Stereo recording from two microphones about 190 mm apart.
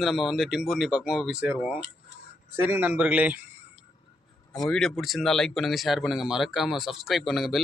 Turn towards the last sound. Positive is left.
turn(degrees=0)  # may be behind; listen again after turning